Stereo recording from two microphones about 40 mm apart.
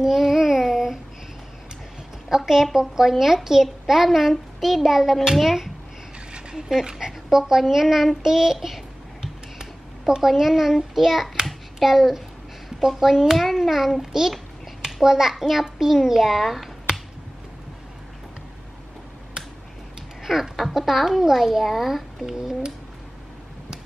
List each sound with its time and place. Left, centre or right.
0.0 s child singing: centre
2.2 s a child's voice: centre
11.4 s child singing: centre
12.6 s a child's voice: centre
15.0 s a child's voice: centre
16.9 s a sound: centre
20.2 s a child's voice: centre